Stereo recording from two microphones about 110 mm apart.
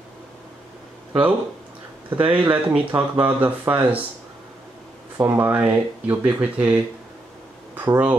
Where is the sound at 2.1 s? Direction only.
15° right (ahead or behind).